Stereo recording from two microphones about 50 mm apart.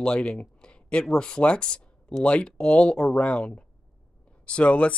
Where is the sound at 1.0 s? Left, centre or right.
Centre.